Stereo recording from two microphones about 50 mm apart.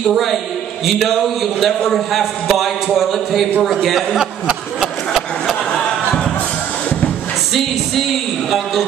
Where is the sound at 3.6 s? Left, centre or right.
Centre.